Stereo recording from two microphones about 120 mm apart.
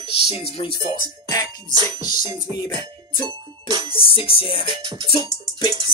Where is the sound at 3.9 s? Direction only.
50° left (ahead or behind).